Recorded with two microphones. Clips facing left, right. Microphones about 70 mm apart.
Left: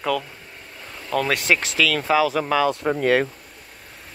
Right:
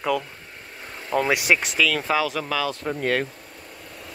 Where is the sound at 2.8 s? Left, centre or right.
Left.